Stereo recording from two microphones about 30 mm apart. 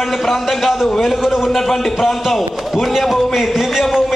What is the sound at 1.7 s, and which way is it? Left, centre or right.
A man's voice, centre.